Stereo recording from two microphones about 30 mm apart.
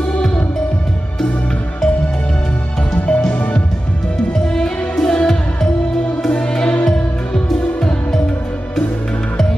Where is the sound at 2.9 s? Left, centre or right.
Left.